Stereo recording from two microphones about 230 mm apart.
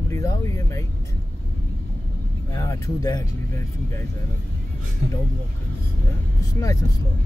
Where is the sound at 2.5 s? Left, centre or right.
Centre.